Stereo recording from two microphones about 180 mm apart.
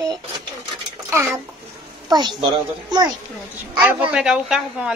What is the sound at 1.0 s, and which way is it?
A child's voice, 15° right (ahead or behind).